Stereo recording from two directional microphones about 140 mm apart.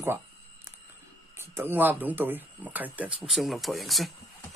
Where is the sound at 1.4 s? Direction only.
15° right (ahead or behind); by 4.1 s centre (ahead or behind).